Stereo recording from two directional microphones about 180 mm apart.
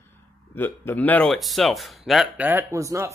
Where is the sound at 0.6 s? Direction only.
10° left (ahead or behind).